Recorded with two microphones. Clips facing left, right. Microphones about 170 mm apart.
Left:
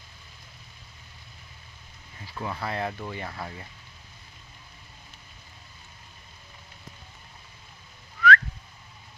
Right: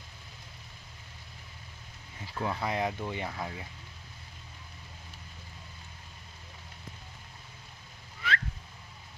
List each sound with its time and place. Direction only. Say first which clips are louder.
2.4 s speech: even; 15° right (ahead or behind)
8.2 s whistling: left 12 dB; 25° right (ahead or behind)